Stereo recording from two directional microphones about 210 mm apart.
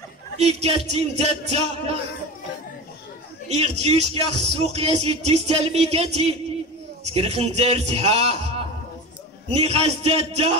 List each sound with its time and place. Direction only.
0.4 s speech: 30° right (ahead or behind)
3.4 s a man's voice: 30° right (ahead or behind)